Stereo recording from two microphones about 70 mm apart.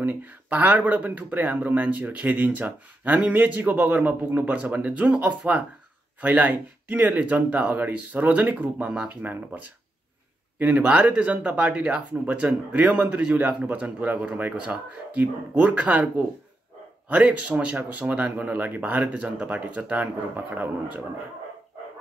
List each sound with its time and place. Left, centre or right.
0.0 s speech: right